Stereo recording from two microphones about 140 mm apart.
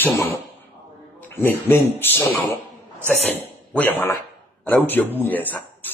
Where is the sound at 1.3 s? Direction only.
15° left (ahead or behind).